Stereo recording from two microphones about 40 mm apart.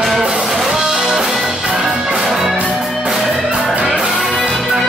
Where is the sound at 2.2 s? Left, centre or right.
Centre.